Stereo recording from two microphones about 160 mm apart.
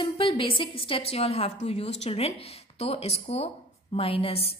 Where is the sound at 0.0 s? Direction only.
35° left (ahead or behind).